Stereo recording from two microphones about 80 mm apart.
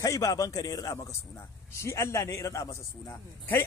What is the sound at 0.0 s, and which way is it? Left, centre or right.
A man's voice, left.